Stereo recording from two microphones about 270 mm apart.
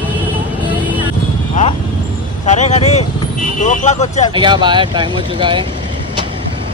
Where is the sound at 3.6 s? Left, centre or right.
Left.